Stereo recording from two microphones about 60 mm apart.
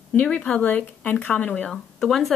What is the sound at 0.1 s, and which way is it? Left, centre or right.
Speech, left.